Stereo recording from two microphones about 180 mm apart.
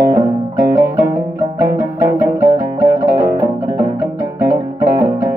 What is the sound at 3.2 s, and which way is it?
Music, 20° right (ahead or behind).